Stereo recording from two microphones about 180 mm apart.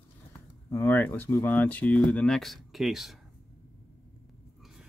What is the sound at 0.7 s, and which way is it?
Speech, 10° left (ahead or behind).